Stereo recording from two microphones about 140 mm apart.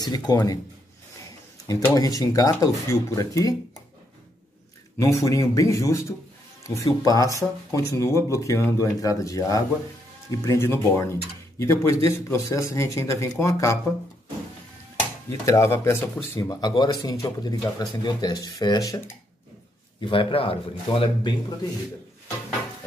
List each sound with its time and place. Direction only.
0.0 s speech: 30° left (ahead or behind)
1.7 s speech: 25° left (ahead or behind)
4.9 s speech: 20° left (ahead or behind)
15.4 s speech: 20° left (ahead or behind)
16.3 s speech: 30° left (ahead or behind)
20.0 s a man's voice: 40° left (ahead or behind)